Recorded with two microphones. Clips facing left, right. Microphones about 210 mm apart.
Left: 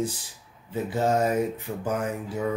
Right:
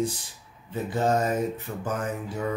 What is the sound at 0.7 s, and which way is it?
Speech, 10° left (ahead or behind).